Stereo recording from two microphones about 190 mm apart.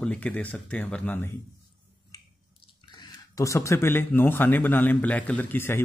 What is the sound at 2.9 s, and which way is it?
Speech, 20° left (ahead or behind).